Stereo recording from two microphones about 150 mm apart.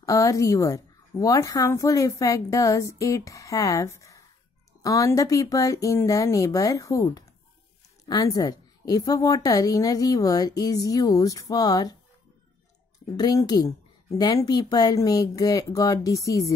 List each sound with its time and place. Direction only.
0.0 s a woman's voice: 20° left (ahead or behind)
13.1 s a woman's voice: 25° left (ahead or behind)